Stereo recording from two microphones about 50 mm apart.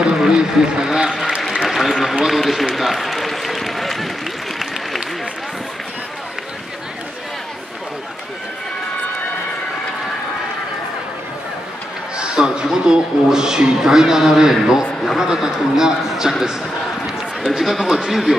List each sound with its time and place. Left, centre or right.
0.2 s a sound: centre
1.5 s applause: centre
2.2 s run: centre
12.2 s a man's voice: centre